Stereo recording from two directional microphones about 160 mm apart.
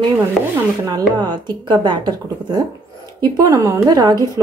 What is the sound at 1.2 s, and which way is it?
Speech, 25° right (ahead or behind).